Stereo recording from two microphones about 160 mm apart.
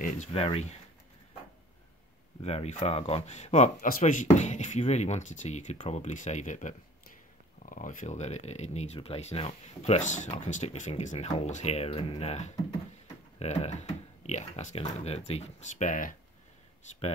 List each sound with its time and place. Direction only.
0.3 s speech: 35° left (ahead or behind)
2.4 s speech: 40° left (ahead or behind)